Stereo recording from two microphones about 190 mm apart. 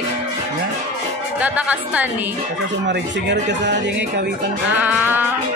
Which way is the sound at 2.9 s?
65° right (ahead or behind).